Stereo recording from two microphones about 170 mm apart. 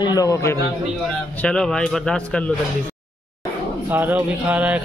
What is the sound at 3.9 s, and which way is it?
Music, 10° right (ahead or behind).